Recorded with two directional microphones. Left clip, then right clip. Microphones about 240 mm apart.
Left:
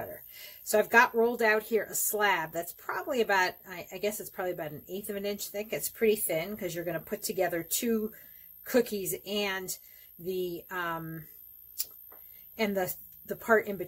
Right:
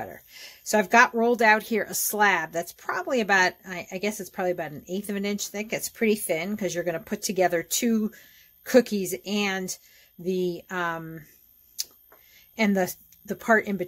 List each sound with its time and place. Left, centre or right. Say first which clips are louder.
0.3 s speech: right 3 dB; right
12.5 s a woman's voice: right 6 dB; right